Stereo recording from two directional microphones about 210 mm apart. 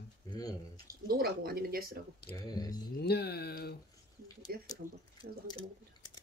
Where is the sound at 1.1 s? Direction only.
45° right (ahead or behind).